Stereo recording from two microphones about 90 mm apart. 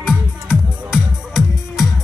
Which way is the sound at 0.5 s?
5° right (ahead or behind).